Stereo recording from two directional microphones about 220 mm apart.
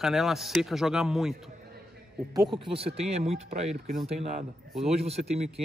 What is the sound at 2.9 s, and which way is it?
Speech, 30° right (ahead or behind).